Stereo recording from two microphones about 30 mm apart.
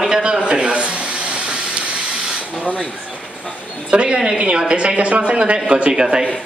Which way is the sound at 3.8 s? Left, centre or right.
Right.